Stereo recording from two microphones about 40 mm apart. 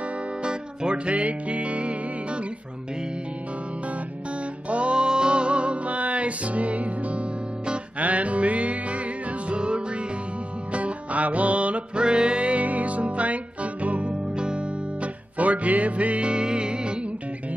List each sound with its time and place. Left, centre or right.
0.4 s music: right
4.6 s music: right
15.3 s music: right